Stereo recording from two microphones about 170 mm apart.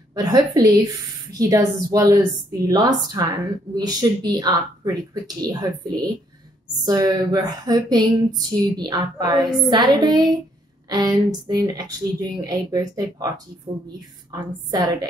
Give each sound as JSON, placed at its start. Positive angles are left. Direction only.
{"t": 0.1, "sound": "a woman's voice", "side_deg": -20}